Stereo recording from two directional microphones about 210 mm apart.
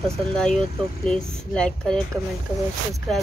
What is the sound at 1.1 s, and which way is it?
Speech, 30° right (ahead or behind).